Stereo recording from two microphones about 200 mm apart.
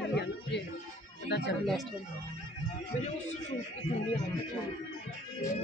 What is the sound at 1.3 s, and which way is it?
Speech, 55° left (ahead or behind).